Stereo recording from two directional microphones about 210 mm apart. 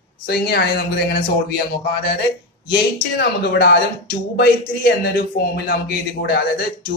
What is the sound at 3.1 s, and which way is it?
Speech, 50° left (ahead or behind).